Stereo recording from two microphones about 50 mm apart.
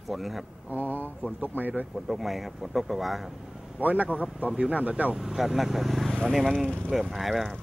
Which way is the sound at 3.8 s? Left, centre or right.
Right.